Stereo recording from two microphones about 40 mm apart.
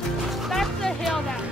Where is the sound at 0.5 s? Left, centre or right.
Centre.